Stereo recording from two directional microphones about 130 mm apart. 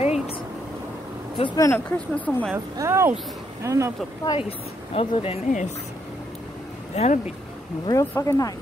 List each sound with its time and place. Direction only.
0.0 s a sound: 55° left (ahead or behind)
1.4 s speech: 30° left (ahead or behind)
1.7 s speech: 10° left (ahead or behind)
2.5 s speech: 20° right (ahead or behind)
4.4 s speech: 45° left (ahead or behind)
7.0 s speech: 60° left (ahead or behind)
7.8 s speech: 25° left (ahead or behind)